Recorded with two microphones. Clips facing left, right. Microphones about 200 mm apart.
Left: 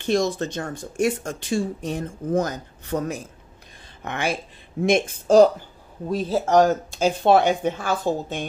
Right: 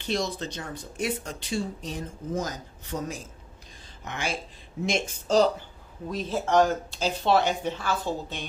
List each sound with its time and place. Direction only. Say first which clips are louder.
0.0 s speech: left 7 dB; 50° left (ahead or behind)
6.0 s speech: left 6 dB; 35° left (ahead or behind)